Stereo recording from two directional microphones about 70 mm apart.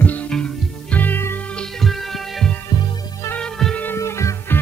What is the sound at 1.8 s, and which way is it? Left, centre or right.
Music, centre.